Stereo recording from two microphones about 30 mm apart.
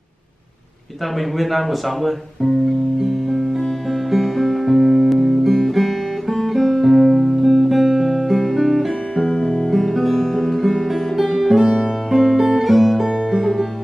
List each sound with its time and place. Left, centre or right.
1.1 s speech: centre
3.0 s music: centre
5.7 s guitar: centre
9.2 s music: left
9.7 s guitar: centre
10.1 s music: centre
10.6 s music: centre
12.7 s music: centre
13.3 s music: centre